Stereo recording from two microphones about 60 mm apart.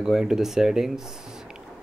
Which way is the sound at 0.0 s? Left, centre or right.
Centre.